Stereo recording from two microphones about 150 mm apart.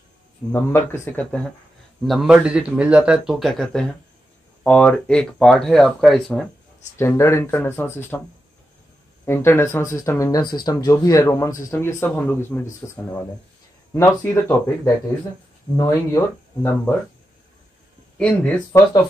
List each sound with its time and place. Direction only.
0.5 s a man's voice: 15° left (ahead or behind)
2.0 s speech: 5° right (ahead or behind)
7.0 s a man's voice: 20° left (ahead or behind)
9.2 s a man's voice: 15° left (ahead or behind)
15.7 s speech: 20° left (ahead or behind)
18.1 s speech: 5° left (ahead or behind)
18.7 s speech: 20° left (ahead or behind)